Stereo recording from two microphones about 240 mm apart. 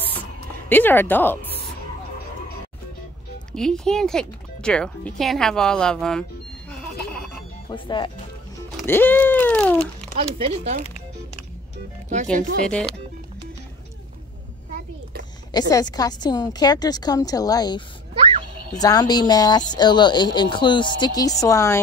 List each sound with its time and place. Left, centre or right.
0.7 s speech: centre
3.5 s speech: centre
7.7 s speech: centre
8.8 s speech: centre
10.1 s speech: right
12.6 s speech: centre
15.5 s speech: centre